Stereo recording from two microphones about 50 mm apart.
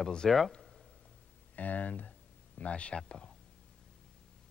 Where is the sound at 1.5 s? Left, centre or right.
Left.